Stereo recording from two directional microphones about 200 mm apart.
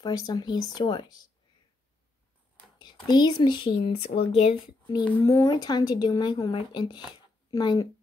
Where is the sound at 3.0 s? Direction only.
20° left (ahead or behind).